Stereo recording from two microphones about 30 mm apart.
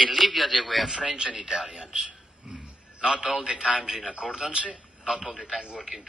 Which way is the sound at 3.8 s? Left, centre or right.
Right.